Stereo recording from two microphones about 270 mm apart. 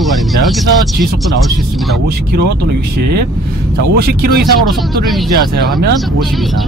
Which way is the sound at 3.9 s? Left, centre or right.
Right.